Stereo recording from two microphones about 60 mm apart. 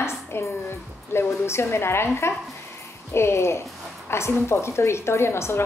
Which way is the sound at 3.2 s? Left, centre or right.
Left.